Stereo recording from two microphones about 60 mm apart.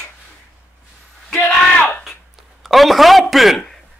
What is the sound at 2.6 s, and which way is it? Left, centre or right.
Speech, centre.